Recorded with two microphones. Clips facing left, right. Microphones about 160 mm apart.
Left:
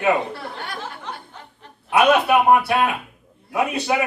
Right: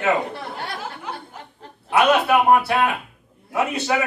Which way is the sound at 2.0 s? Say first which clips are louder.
Left 1 dB; 15° left (ahead or behind).